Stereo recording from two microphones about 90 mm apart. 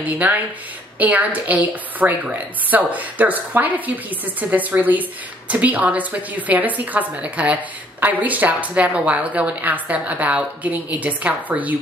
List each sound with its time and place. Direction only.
0.0 s a woman's voice: 20° right (ahead or behind)